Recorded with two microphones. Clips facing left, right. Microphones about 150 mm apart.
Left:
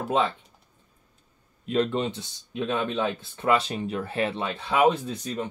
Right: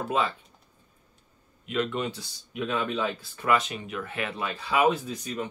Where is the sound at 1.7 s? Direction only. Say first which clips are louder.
Left 4 dB; 35° left (ahead or behind).